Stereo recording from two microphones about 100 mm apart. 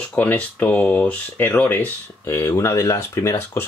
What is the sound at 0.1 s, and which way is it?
Speech, 15° left (ahead or behind).